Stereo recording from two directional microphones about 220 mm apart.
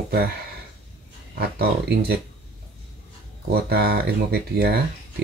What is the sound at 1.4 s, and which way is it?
Speech, 45° right (ahead or behind).